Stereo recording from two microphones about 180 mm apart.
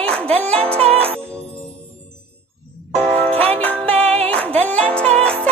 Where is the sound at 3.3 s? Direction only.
10° left (ahead or behind).